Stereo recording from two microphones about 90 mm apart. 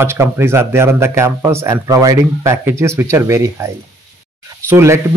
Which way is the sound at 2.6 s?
30° right (ahead or behind).